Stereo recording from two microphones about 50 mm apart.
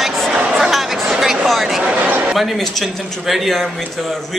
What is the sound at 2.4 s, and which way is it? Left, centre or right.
A man's voice, centre.